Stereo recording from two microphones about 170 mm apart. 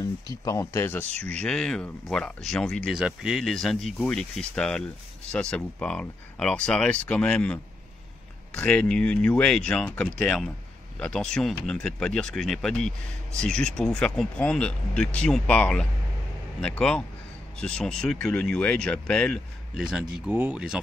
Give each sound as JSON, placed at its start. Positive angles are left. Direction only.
{"t": 0.0, "sound": "speech", "side_deg": 20}